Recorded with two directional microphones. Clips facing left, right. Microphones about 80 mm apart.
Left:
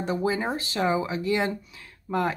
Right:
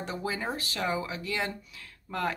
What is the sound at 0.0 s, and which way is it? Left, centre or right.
Speech, left.